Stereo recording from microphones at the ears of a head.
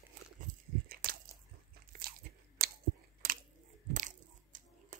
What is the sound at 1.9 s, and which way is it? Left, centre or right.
Crunch, right.